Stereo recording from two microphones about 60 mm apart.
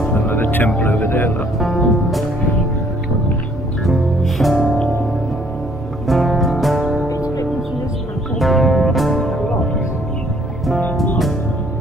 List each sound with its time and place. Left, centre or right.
0.1 s music: left
1.6 s music: centre
3.8 s music: centre
6.0 s music: centre
7.1 s music: left
8.4 s music: centre